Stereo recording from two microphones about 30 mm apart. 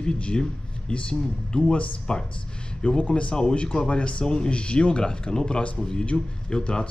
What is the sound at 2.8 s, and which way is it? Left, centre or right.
A man's voice, left.